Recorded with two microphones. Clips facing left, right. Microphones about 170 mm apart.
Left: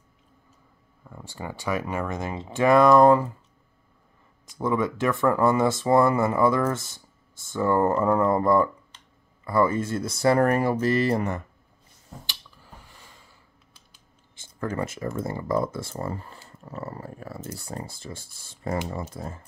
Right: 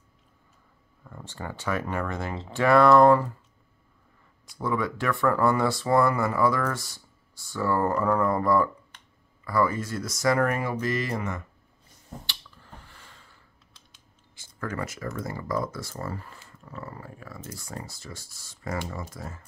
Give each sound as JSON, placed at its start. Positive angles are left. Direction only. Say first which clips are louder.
{"t": 1.0, "sound": "speech", "louder": "left 1 dB", "side_deg": 10}
{"t": 4.6, "sound": "speech", "louder": "left 3 dB", "side_deg": 20}
{"t": 12.3, "sound": "a sound", "louder": "even", "side_deg": 15}
{"t": 14.3, "sound": "speech", "louder": "left 4 dB", "side_deg": 25}